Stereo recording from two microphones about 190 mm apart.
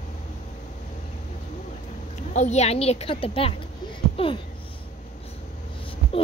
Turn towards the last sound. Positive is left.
turn(degrees=30)  # may be behind; listen again after turning